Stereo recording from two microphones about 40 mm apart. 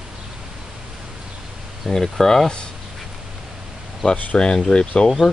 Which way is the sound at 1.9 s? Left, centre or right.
Centre.